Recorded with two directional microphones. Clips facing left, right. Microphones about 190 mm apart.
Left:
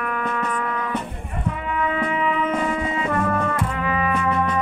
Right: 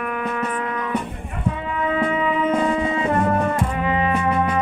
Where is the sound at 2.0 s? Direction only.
35° right (ahead or behind).